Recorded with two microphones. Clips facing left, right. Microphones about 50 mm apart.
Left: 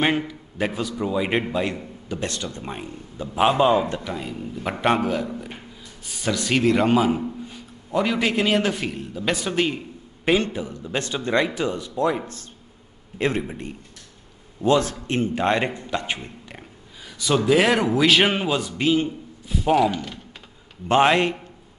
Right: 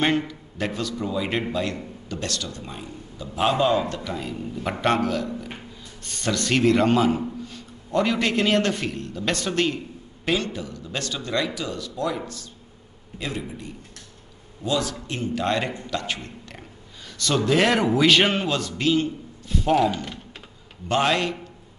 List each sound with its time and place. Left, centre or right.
0.3 s a man's voice: centre
4.1 s a man's voice: centre
6.0 s a man's voice: centre
10.2 s a man's voice: left
13.2 s a man's voice: left; by 20.2 s centre
20.9 s a man's voice: left